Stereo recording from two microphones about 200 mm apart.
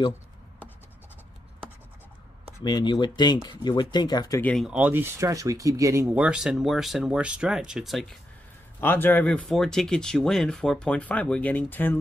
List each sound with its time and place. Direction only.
2.6 s speech: 20° left (ahead or behind)
4.4 s speech: 5° left (ahead or behind)
8.8 s speech: 10° left (ahead or behind)